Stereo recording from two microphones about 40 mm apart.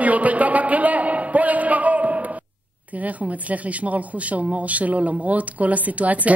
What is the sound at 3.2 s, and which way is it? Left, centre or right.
Speech, right.